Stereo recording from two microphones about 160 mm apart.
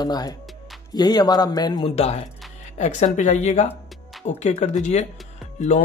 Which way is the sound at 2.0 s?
40° left (ahead or behind).